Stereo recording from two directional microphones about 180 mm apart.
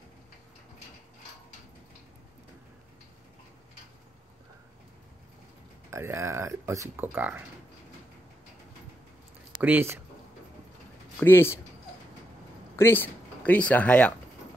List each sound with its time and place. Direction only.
5.9 s speech: 15° right (ahead or behind)
9.6 s speech: 10° right (ahead or behind)
11.1 s speech: 10° left (ahead or behind)
12.7 s speech: 10° left (ahead or behind)